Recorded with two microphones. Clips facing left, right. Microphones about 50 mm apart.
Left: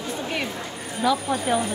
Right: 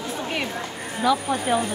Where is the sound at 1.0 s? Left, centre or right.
Centre.